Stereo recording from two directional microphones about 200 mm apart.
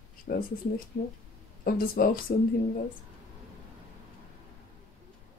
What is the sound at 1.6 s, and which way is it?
Speech, 45° left (ahead or behind).